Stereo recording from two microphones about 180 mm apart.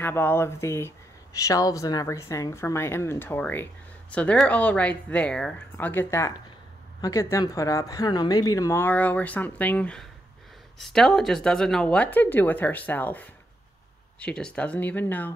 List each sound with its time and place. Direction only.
0.0 s speech: 10° left (ahead or behind)